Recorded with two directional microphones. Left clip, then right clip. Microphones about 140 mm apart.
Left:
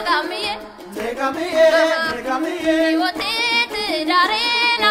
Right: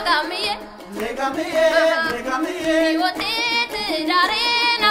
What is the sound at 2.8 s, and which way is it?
Music, 10° right (ahead or behind).